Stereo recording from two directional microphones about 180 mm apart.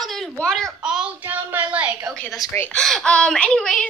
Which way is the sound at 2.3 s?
15° left (ahead or behind).